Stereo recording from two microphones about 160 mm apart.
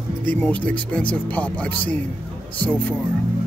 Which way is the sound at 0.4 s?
10° left (ahead or behind).